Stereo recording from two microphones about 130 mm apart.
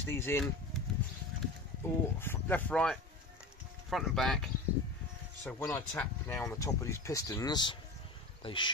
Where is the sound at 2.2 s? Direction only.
15° left (ahead or behind).